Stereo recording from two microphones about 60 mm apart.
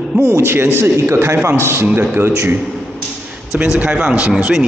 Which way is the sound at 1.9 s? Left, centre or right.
Right.